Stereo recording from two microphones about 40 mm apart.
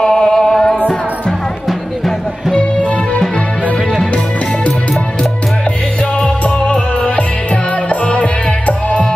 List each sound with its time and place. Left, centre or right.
0.0 s music: centre
6.1 s music: left